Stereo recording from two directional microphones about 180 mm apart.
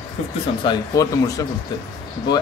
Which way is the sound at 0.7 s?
20° left (ahead or behind).